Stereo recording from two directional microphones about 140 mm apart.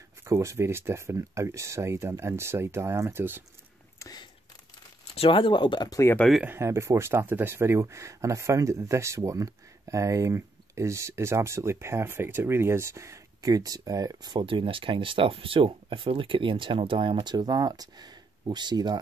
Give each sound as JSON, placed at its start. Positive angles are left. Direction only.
{"t": 0.2, "sound": "speech", "side_deg": -20}
{"t": 4.0, "sound": "a sound", "side_deg": 30}
{"t": 5.1, "sound": "speech", "side_deg": 40}
{"t": 6.1, "sound": "speech", "side_deg": 5}
{"t": 6.4, "sound": "speech", "side_deg": -20}